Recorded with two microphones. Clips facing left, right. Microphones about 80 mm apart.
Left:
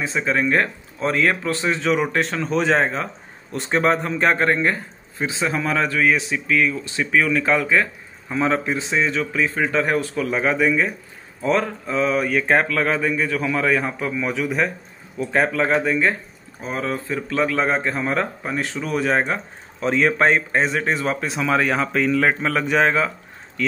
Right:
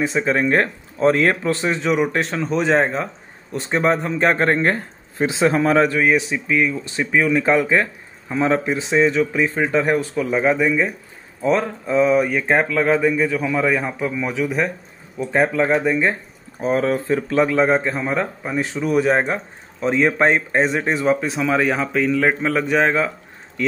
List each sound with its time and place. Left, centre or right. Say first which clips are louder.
0.0 s speech: right 3 dB; right
2.3 s a man's voice: right 2 dB; centre
16.6 s speech: right 7 dB; right
17.6 s speech: right 4 dB; centre
19.8 s speech: right 1 dB; centre
22.9 s a sound: right 1 dB; centre